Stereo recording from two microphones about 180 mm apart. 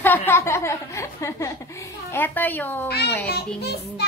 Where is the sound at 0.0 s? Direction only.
10° left (ahead or behind).